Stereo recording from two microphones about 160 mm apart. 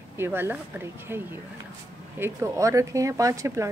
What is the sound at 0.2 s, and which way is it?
A woman's voice, 15° right (ahead or behind).